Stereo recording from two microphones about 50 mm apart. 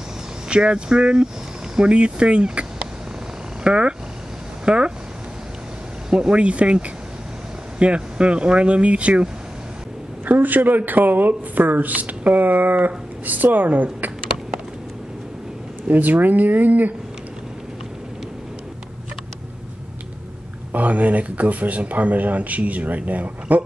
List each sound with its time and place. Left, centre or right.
0.5 s speech: centre
6.0 s speech: centre
7.8 s speech: right
10.2 s speech: right
15.9 s speech: right
20.7 s speech: right